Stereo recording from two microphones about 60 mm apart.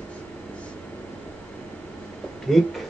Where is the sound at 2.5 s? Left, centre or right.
Centre.